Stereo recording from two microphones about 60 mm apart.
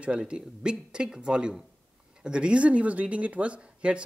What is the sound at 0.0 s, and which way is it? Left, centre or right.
Speech, centre.